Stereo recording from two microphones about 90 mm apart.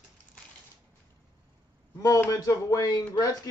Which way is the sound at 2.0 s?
40° left (ahead or behind).